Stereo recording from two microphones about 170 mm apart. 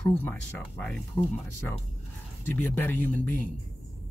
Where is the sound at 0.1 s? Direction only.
10° left (ahead or behind).